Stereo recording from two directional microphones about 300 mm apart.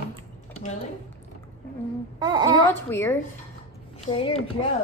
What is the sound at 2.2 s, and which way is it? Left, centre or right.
Speech, centre.